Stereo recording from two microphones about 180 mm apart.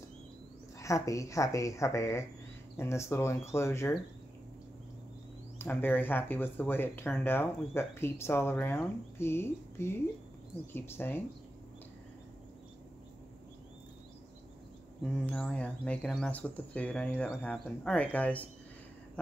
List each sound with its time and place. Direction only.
0.7 s speech: 20° left (ahead or behind)
5.6 s speech: 10° left (ahead or behind)
15.2 s speech: 5° left (ahead or behind)